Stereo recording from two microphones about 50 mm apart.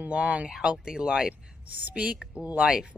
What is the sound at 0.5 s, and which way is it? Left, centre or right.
Speech, centre.